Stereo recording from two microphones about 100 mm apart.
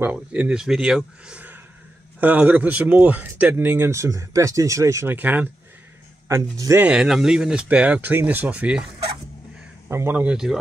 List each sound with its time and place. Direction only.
0.0 s speech: 10° right (ahead or behind); by 5.1 s 30° right (ahead or behind)
5.1 s speech: 15° right (ahead or behind)
6.2 s speech: 30° right (ahead or behind)
6.8 s speech: 10° right (ahead or behind)
9.8 s speech: 25° right (ahead or behind)
10.2 s speech: 5° right (ahead or behind)